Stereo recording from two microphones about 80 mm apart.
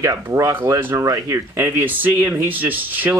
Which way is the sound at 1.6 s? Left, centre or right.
Right.